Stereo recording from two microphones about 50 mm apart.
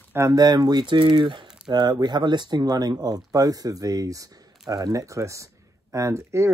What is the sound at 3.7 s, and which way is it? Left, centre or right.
Speech, right.